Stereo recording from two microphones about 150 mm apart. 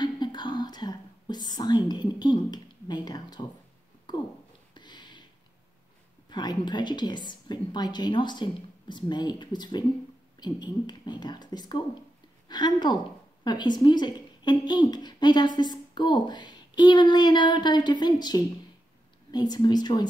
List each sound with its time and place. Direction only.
0.0 s whispering: 30° left (ahead or behind)
1.9 s speech: 30° left (ahead or behind)
4.7 s a sound: 30° left (ahead or behind)
6.3 s a woman's voice: 30° left (ahead or behind)